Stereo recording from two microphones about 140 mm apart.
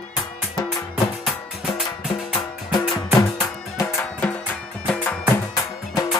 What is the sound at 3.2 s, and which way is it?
Music, 25° left (ahead or behind).